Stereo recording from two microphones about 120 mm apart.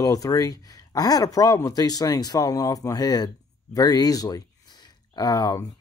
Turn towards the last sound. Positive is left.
turn(degrees=30)  # may be behind; listen again after turning